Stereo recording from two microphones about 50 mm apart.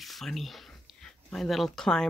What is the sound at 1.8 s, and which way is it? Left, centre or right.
Speech, centre.